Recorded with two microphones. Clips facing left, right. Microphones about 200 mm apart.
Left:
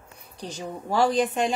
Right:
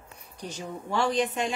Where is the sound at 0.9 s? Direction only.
40° left (ahead or behind).